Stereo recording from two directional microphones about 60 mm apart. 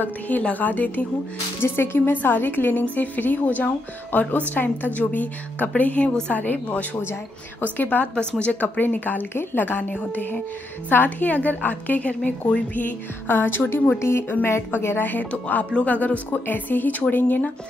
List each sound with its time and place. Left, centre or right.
0.0 s speech: left
1.6 s a woman's voice: left
8.2 s a woman's voice: centre; by 15.0 s left
15.0 s a woman's voice: left